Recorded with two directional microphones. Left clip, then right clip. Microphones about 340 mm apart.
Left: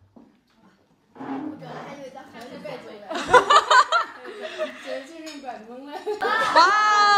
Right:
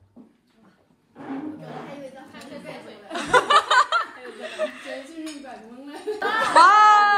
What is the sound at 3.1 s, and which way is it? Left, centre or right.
Chuckle, centre.